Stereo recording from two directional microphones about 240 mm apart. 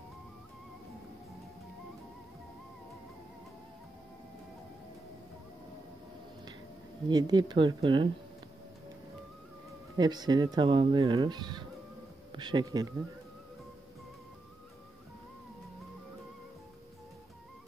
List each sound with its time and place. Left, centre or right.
7.1 s speech: centre
9.9 s speech: centre